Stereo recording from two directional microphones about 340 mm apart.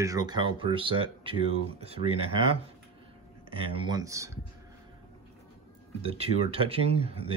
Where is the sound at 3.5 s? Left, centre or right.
Centre.